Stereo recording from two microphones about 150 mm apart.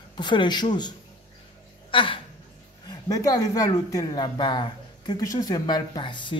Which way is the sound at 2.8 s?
25° left (ahead or behind).